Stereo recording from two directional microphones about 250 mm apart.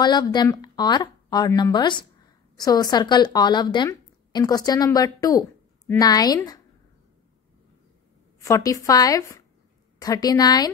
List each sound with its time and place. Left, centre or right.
0.0 s speech: centre
8.4 s speech: centre